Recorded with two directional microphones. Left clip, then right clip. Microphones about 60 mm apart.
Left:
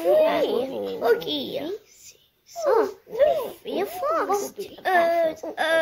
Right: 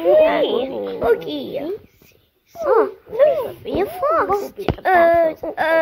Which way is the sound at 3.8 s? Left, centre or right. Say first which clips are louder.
Right 7 dB; right.